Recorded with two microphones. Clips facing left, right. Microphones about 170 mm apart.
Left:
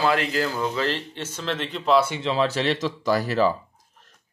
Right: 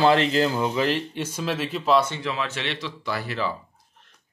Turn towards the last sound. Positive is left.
turn(degrees=40)  # may be behind; listen again after turning